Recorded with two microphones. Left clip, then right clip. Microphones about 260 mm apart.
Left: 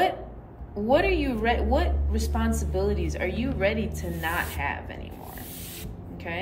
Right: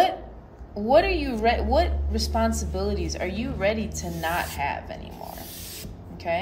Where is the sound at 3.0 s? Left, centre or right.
Centre.